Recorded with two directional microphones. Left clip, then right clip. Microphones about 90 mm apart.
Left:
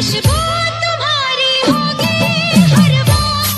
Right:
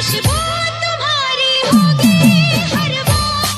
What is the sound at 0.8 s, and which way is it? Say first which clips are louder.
Music: left 1 dB; 30° right (ahead or behind).